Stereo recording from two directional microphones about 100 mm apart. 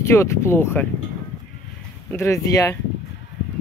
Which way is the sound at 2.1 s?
30° left (ahead or behind).